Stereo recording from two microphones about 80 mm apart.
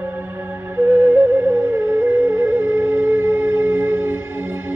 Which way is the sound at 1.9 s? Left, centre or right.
Right.